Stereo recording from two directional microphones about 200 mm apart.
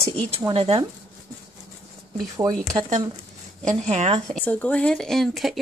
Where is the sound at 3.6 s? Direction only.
35° right (ahead or behind).